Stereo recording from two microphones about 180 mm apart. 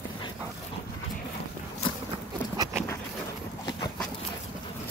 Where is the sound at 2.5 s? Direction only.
20° right (ahead or behind).